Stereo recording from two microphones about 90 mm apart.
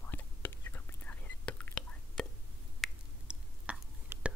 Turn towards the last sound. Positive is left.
turn(degrees=-25)  # may be behind; listen again after turning